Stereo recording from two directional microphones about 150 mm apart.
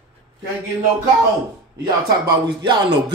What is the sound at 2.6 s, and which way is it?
Speech, 30° right (ahead or behind).